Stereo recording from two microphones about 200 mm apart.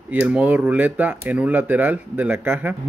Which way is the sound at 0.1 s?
5° right (ahead or behind).